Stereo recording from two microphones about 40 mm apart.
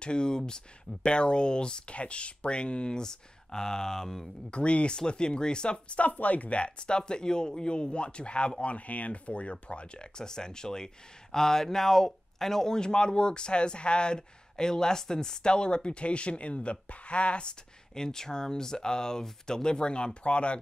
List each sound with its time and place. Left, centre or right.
0.0 s speech: left
4.5 s speech: left